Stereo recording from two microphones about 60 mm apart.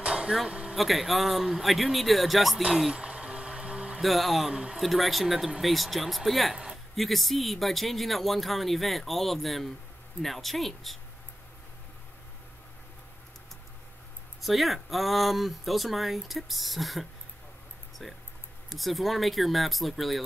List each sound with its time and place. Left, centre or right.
0.0 s a sound: centre
0.7 s speech: centre
2.6 s music: centre
4.0 s speech: centre
4.5 s speech: centre
4.7 s speech: centre
14.4 s speech: centre